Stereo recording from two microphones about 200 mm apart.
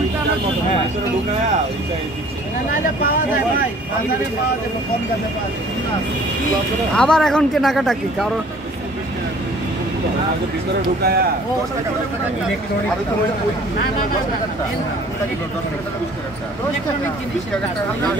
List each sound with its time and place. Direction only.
7.0 s speech: 5° left (ahead or behind)
11.0 s speech: 50° right (ahead or behind)